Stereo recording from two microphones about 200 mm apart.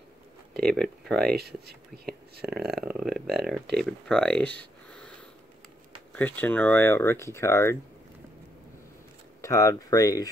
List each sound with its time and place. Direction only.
0.6 s speech: centre (ahead or behind)
1.3 s speech: 50° right (ahead or behind)
2.4 s speech: centre (ahead or behind)
4.8 s wheeze: 5° left (ahead or behind)
6.1 s speech: 10° left (ahead or behind)
9.4 s speech: 15° left (ahead or behind)